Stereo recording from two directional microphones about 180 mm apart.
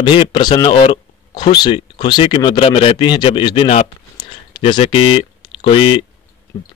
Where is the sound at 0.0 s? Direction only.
25° left (ahead or behind).